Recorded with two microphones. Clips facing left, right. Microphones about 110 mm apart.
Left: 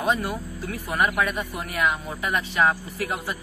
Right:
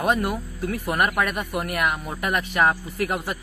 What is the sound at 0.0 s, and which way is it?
A man's voice, 55° right (ahead or behind).